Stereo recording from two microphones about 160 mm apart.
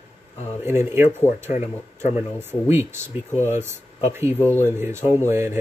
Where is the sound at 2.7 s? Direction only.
15° right (ahead or behind).